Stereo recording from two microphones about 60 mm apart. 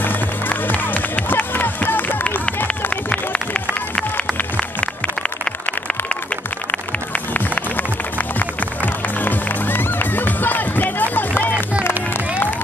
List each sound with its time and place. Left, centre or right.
0.0 s run: left
2.2 s run: left
6.7 s music: left